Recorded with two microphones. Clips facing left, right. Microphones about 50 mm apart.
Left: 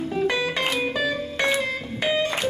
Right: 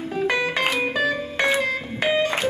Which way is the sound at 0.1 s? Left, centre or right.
Centre.